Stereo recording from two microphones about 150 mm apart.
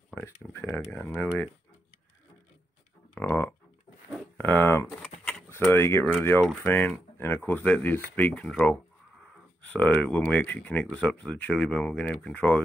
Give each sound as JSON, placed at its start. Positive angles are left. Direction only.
{"t": 0.1, "sound": "speech", "side_deg": 15}
{"t": 3.2, "sound": "speech", "side_deg": 10}